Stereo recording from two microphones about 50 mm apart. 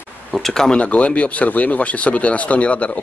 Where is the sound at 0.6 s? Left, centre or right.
Left.